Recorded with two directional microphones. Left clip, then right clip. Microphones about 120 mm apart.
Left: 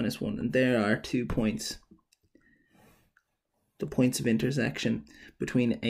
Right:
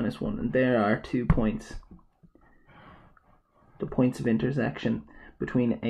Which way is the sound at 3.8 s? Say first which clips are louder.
Right 1 dB; 30° left (ahead or behind).